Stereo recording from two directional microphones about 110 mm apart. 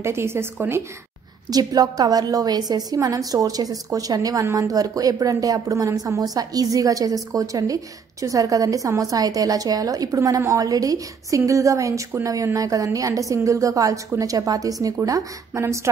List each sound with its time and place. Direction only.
0.0 s a woman's voice: 25° right (ahead or behind)
1.5 s a woman's voice: 35° right (ahead or behind)